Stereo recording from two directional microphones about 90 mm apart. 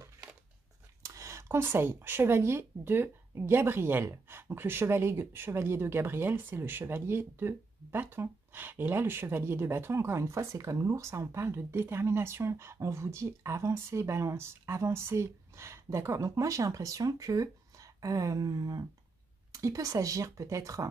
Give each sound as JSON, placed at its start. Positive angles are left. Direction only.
{"t": 1.0, "sound": "speech", "side_deg": -35}